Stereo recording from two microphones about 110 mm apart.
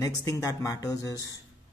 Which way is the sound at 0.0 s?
30° left (ahead or behind).